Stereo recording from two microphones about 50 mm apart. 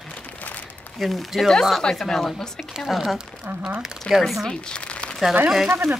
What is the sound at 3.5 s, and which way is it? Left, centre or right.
Speech, right.